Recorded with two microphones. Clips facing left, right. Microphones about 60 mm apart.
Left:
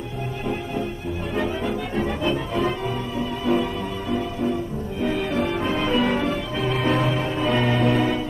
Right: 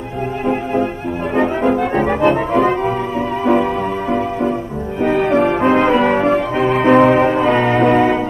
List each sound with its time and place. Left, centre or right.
1.3 s music: right
5.0 s brass instrument: right